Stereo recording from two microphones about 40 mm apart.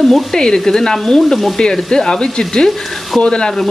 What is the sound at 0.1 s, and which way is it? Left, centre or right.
Speech, centre.